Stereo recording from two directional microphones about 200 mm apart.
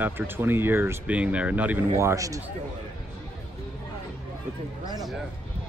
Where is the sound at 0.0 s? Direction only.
10° right (ahead or behind).